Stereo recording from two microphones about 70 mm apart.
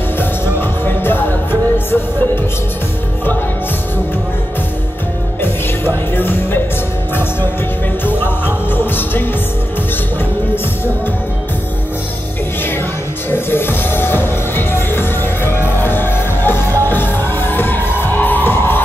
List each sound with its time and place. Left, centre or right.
0.2 s music: left
5.4 s music: left
8.0 s music: left
13.3 s music: left